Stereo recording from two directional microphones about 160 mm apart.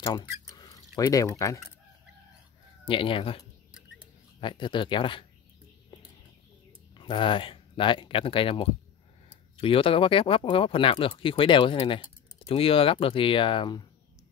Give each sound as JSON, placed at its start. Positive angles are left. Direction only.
{"t": 0.0, "sound": "speech", "side_deg": 30}
{"t": 0.6, "sound": "a sound", "side_deg": 25}
{"t": 2.8, "sound": "speech", "side_deg": 35}
{"t": 7.0, "sound": "speech", "side_deg": 30}